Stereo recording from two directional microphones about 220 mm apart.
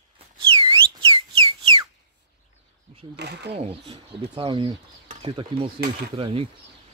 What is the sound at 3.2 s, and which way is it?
Speech, 50° right (ahead or behind).